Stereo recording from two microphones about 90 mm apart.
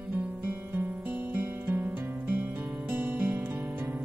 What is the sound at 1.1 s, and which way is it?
Music, 25° right (ahead or behind).